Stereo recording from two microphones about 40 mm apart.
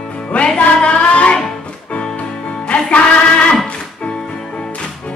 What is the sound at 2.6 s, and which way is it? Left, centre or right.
Music, left.